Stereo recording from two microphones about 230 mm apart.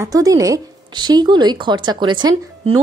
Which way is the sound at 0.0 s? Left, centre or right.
Centre.